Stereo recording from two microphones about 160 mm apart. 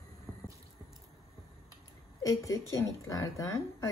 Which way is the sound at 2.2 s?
20° left (ahead or behind).